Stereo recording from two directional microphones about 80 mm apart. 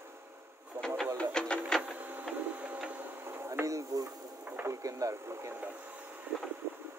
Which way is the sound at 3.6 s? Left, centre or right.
Right.